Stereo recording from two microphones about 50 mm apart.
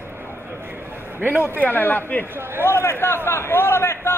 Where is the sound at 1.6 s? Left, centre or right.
Left.